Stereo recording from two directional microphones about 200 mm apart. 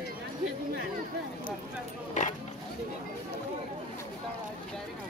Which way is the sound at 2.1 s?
40° left (ahead or behind).